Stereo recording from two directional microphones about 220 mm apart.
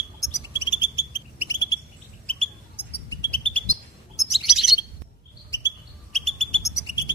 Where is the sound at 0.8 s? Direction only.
10° right (ahead or behind).